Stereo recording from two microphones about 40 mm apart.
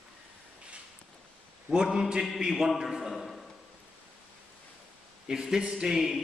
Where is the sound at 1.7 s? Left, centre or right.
Centre.